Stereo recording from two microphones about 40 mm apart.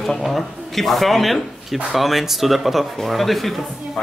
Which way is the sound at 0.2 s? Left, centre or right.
Centre.